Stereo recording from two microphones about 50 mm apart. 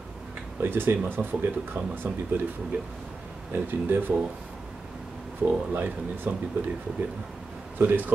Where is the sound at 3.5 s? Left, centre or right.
Right.